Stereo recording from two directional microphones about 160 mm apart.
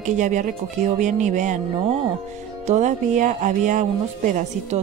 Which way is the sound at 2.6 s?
50° right (ahead or behind).